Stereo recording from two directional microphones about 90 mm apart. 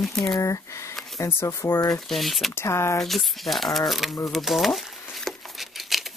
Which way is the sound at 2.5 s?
30° left (ahead or behind).